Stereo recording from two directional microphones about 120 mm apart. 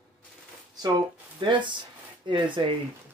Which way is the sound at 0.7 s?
35° right (ahead or behind).